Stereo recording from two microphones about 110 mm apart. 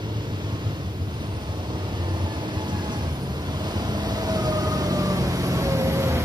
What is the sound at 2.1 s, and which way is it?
Vehicle, 45° right (ahead or behind).